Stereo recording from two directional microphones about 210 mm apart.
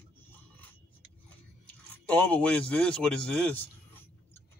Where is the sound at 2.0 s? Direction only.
5° left (ahead or behind).